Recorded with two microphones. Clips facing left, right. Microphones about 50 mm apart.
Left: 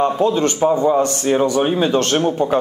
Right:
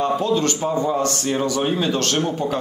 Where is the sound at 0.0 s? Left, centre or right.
Left.